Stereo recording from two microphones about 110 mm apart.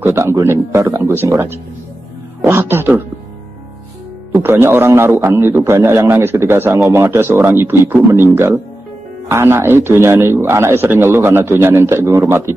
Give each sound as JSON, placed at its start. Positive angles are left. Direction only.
{"t": 0.0, "sound": "a man's voice", "side_deg": -25}
{"t": 4.4, "sound": "a man's voice", "side_deg": -20}